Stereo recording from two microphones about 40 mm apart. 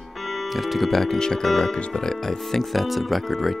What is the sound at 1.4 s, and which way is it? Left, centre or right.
Speech, centre.